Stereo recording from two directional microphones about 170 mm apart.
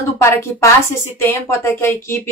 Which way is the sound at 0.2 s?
15° left (ahead or behind).